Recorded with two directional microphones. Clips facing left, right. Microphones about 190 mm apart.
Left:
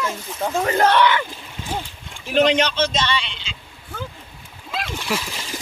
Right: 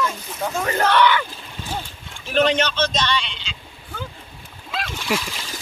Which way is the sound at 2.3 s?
15° left (ahead or behind).